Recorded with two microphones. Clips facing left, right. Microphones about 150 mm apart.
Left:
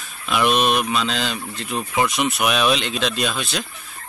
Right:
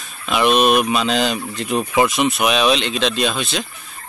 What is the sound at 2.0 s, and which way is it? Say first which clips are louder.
Speech: right 3 dB; centre (ahead or behind).